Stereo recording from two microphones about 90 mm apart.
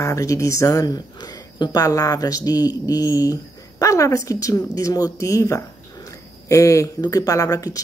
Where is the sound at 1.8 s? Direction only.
40° left (ahead or behind).